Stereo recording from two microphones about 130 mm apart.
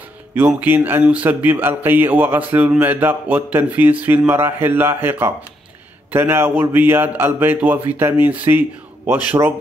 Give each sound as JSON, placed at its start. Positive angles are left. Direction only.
{"t": 0.3, "sound": "speech", "side_deg": -15}